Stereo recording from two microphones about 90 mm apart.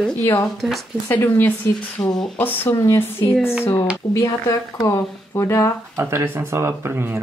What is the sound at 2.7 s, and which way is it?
Speech, 35° left (ahead or behind).